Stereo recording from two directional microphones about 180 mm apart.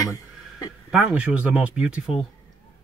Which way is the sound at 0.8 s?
5° right (ahead or behind).